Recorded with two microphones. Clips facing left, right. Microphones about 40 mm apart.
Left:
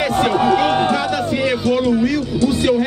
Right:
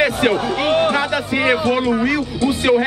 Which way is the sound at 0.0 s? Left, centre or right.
Centre.